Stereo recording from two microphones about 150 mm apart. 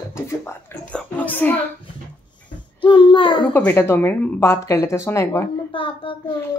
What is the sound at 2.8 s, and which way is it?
Child singing, 35° left (ahead or behind).